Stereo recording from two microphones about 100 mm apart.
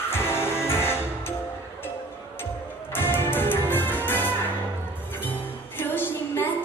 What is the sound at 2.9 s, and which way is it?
Music, 20° left (ahead or behind).